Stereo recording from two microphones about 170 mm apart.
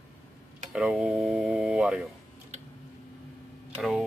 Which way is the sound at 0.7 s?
5° right (ahead or behind).